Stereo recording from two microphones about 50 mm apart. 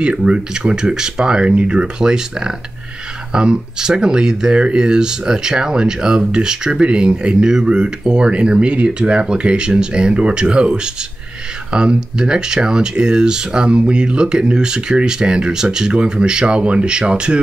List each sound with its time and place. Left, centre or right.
0.0 s speech: centre